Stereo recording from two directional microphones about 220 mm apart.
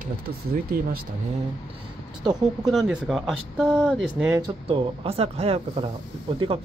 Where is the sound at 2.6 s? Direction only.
Centre (ahead or behind).